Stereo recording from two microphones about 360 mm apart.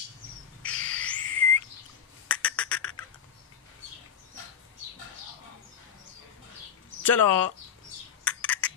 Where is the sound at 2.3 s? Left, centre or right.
Centre.